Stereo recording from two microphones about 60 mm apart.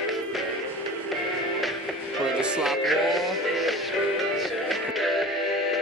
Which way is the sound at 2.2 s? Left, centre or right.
Centre.